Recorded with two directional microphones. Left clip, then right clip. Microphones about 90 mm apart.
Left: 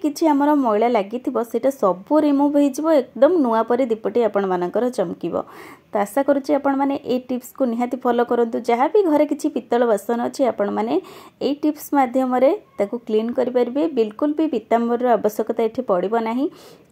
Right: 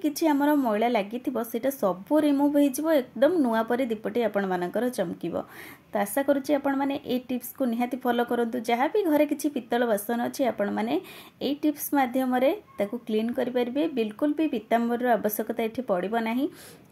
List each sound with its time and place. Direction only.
0.0 s a woman's voice: 40° left (ahead or behind)